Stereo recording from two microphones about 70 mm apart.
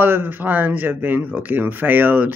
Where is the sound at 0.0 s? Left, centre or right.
Right.